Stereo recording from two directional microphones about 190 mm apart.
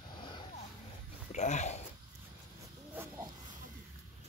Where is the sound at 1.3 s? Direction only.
40° left (ahead or behind).